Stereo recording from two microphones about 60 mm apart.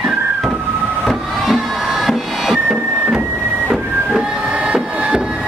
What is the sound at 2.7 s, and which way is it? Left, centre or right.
Music, centre.